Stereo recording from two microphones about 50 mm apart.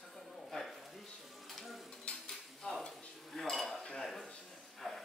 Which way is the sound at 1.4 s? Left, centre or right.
Centre.